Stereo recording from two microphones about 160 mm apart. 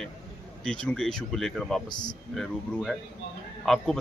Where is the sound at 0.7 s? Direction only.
5° left (ahead or behind).